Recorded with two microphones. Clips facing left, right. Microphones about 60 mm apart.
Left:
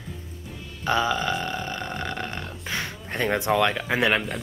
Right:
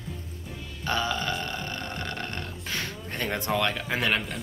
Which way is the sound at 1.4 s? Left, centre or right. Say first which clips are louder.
Left 4 dB; centre.